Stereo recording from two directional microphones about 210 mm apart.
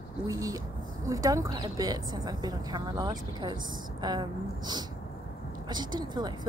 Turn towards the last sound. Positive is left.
turn(degrees=-20)  # may be behind; listen again after turning